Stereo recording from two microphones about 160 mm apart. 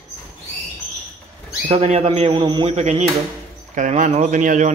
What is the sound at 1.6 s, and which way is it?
Speech, 40° right (ahead or behind).